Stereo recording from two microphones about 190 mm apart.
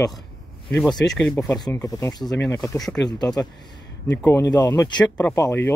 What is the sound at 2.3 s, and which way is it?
Speech, 5° left (ahead or behind).